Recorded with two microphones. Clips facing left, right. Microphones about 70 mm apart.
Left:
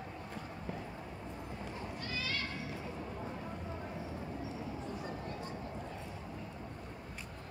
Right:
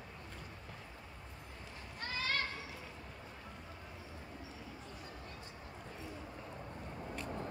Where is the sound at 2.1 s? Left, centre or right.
Right.